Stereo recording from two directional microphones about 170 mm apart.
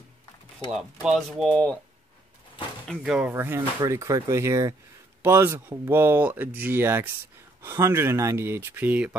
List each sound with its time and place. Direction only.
1.0 s speech: centre (ahead or behind)
2.9 s speech: 5° right (ahead or behind)